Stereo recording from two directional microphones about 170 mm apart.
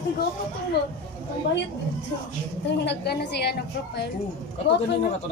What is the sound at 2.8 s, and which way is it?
A woman's voice, 75° left (ahead or behind).